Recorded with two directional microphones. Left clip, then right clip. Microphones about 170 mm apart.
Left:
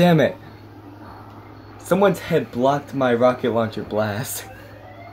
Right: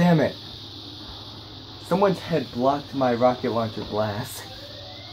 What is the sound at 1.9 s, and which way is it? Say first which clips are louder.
Speech: left 4 dB; 45° left (ahead or behind).